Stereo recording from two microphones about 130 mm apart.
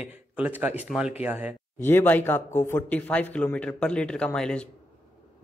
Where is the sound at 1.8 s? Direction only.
15° left (ahead or behind).